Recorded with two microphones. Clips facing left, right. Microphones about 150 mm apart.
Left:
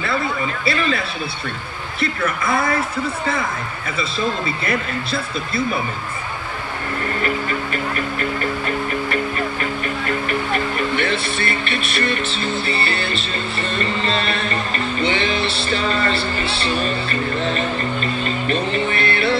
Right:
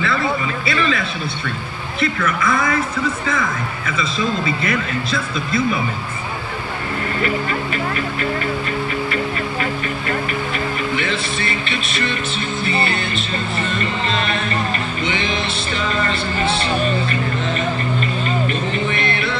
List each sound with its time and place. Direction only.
0.7 s a sound: 35° left (ahead or behind)
2.1 s speech: 30° left (ahead or behind)
11.0 s speech: 55° left (ahead or behind)
12.8 s speech: 35° left (ahead or behind)
15.0 s speech: 35° left (ahead or behind)
18.5 s music: 35° left (ahead or behind)